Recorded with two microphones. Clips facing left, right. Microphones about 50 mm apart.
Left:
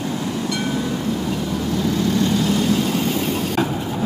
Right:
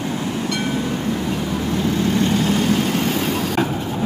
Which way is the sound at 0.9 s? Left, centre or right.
Right.